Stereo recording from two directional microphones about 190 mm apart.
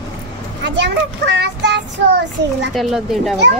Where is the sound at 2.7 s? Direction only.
Centre (ahead or behind).